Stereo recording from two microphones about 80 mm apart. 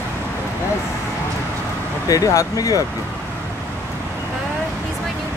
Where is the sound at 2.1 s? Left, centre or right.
Left.